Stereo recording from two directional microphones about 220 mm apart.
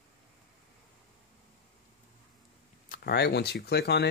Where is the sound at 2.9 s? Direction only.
45° left (ahead or behind).